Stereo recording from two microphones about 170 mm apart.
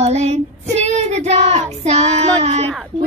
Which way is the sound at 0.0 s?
40° right (ahead or behind).